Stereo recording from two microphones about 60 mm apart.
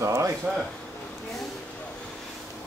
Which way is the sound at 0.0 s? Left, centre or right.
Right.